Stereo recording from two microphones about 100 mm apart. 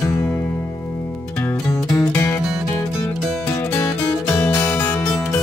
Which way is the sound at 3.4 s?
25° left (ahead or behind).